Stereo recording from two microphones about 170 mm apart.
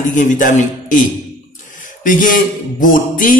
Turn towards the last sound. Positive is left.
turn(degrees=50)  # may be behind; listen again after turning